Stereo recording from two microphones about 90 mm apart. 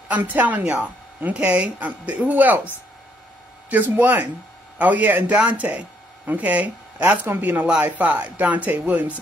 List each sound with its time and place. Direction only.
0.1 s speech: 20° right (ahead or behind)
3.7 s speech: 20° right (ahead or behind)